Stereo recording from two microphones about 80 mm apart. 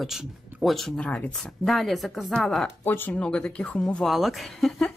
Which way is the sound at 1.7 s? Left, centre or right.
Centre.